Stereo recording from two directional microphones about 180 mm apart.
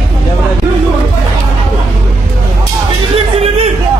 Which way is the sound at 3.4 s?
35° right (ahead or behind).